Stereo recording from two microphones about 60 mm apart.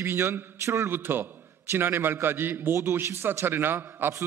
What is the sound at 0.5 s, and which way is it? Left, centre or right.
Speech, right.